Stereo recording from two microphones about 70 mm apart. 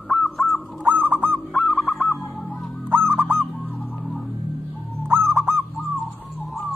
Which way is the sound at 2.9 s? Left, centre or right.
Right.